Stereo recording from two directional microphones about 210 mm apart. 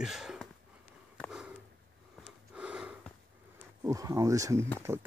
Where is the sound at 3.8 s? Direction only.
15° right (ahead or behind).